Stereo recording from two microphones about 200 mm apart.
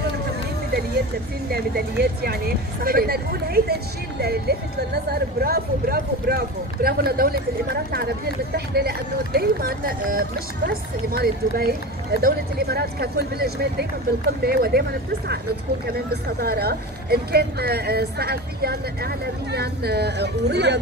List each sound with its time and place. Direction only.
1.5 s speech: 50° right (ahead or behind)
15.9 s speech: 55° right (ahead or behind)